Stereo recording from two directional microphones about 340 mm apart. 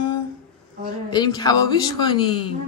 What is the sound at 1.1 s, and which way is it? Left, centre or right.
Speech, centre.